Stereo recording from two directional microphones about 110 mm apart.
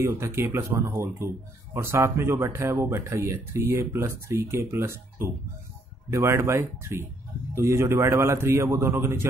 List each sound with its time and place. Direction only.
0.0 s speech: 25° right (ahead or behind)